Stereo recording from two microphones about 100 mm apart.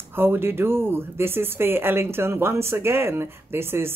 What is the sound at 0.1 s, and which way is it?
Speech, 20° right (ahead or behind).